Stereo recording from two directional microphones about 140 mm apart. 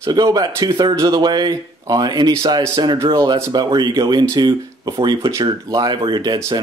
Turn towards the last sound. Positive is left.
turn(degrees=-30)  # may be behind; listen again after turning